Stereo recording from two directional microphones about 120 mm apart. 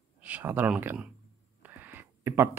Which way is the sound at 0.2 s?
15° right (ahead or behind).